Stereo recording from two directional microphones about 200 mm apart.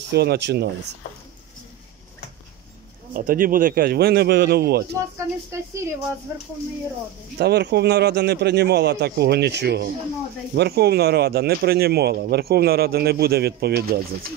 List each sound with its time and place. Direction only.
0.1 s a man's voice: 55° right (ahead or behind)
3.1 s speech: 45° right (ahead or behind)
5.1 s speech: 15° right (ahead or behind)
7.3 s a man's voice: 55° right (ahead or behind)